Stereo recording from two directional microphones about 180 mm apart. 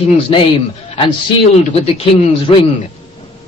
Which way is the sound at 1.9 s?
35° left (ahead or behind).